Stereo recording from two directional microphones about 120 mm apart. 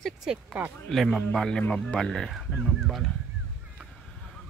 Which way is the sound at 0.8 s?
Centre (ahead or behind).